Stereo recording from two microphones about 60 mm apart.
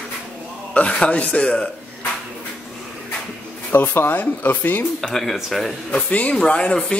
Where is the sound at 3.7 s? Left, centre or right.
Left.